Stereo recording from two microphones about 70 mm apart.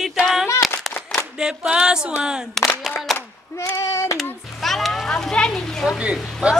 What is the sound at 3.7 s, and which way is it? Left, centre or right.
Child singing, left.